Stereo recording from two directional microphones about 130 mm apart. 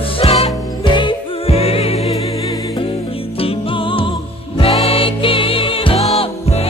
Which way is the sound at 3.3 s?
45° left (ahead or behind).